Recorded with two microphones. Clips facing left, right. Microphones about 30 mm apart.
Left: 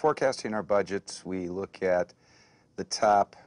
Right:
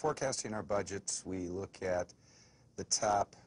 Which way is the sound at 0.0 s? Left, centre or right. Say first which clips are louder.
Left 9 dB; left.